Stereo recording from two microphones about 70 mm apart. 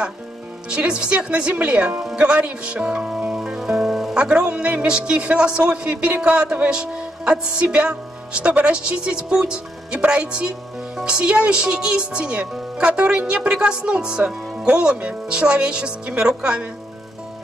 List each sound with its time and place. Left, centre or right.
0.7 s a man's voice: centre
3.3 s music: centre
4.2 s a man's voice: centre